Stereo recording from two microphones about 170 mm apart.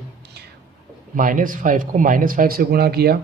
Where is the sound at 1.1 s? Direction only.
50° right (ahead or behind).